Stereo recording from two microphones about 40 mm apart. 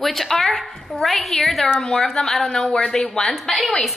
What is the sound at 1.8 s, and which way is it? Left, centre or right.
A woman's voice, centre.